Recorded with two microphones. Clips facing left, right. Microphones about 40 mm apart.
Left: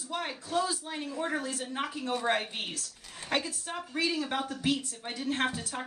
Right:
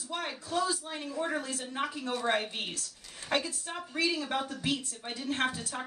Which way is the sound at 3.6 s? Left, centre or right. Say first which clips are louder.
Even; centre.